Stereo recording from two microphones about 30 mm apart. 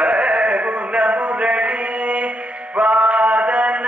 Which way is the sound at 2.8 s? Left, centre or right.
Right.